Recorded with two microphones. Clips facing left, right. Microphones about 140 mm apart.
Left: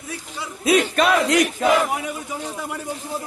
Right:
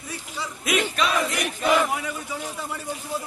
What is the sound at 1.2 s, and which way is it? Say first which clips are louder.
Battle cry: left 8 dB; 90° left.